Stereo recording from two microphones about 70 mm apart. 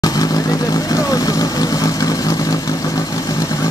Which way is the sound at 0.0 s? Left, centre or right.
Left.